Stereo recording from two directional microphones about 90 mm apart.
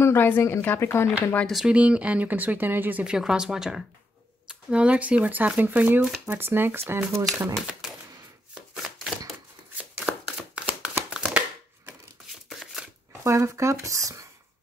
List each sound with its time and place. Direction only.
0.0 s speech: 25° left (ahead or behind)
1.5 s speech: 5° right (ahead or behind)
1.8 s speech: 15° right (ahead or behind); by 7.5 s 30° right (ahead or behind)
9.9 s chopping: 10° right (ahead or behind)
11.1 s a sound: 15° right (ahead or behind)
12.4 s shuffling cards: centre (ahead or behind)
13.2 s speech: 35° right (ahead or behind)